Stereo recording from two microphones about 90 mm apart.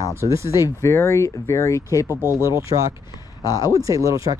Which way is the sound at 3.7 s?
40° right (ahead or behind).